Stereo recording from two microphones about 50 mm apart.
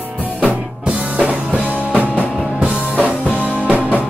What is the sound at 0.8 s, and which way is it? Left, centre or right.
Music, right.